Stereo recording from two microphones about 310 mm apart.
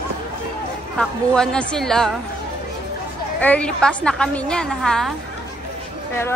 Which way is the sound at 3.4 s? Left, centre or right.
Centre.